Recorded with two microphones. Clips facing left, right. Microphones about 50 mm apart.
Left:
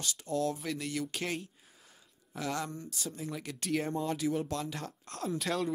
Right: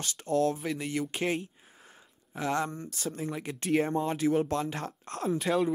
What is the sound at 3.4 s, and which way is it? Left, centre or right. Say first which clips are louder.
Speech: right 6 dB; right.